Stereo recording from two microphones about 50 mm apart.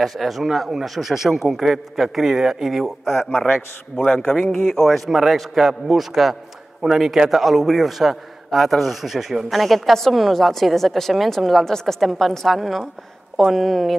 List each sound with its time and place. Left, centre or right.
0.0 s a man's voice: centre
3.9 s a man's voice: left; by 13.9 s centre